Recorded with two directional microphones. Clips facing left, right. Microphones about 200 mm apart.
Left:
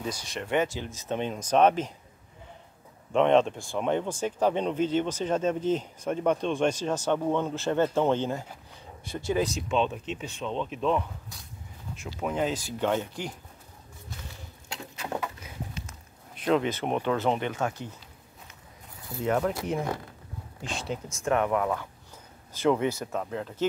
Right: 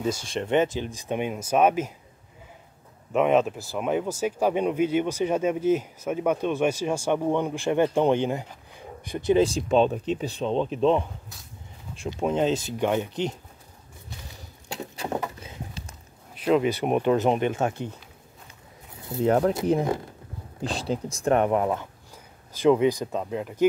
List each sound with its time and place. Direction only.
0.0 s speech: 25° right (ahead or behind); by 1.9 s 10° right (ahead or behind)
3.1 s speech: 5° right (ahead or behind); by 13.4 s 20° right (ahead or behind)
15.0 s a sound: 30° right (ahead or behind)
16.4 s speech: 10° right (ahead or behind); by 17.7 s 25° right (ahead or behind)
19.2 s speech: 35° right (ahead or behind)
22.5 s speech: 15° right (ahead or behind)